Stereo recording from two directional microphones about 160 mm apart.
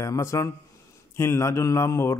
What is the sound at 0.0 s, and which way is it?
A man's voice, 20° left (ahead or behind).